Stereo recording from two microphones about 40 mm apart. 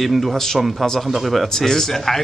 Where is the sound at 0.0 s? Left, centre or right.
Centre.